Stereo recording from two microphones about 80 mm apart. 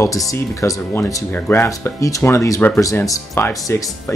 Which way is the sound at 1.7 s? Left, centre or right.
Left.